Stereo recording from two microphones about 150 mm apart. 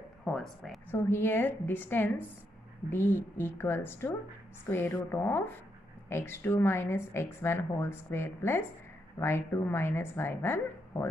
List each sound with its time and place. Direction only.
0.2 s speech: centre (ahead or behind)
0.9 s speech: 15° left (ahead or behind)